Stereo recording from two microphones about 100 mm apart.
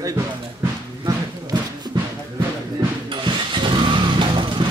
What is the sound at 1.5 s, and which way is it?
Music, 45° right (ahead or behind).